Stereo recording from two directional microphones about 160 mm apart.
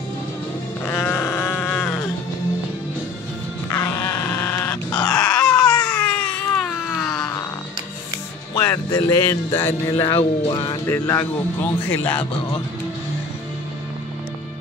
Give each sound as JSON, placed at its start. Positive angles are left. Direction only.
{"t": 0.8, "sound": "sheep", "side_deg": 15}
{"t": 3.7, "sound": "groan", "side_deg": 15}
{"t": 8.5, "sound": "speech", "side_deg": 20}